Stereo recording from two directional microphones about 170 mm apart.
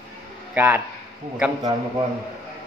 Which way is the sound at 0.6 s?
10° right (ahead or behind).